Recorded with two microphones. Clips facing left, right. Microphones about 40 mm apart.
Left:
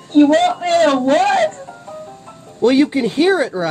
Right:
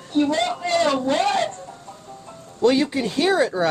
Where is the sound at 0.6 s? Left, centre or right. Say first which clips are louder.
Left 6 dB; left.